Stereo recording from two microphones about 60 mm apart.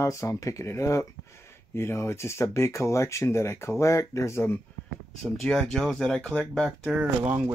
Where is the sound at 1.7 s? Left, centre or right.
Left.